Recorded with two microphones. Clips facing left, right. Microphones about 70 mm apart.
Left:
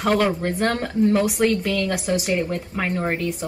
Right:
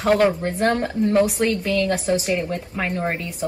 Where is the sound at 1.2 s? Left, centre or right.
Centre.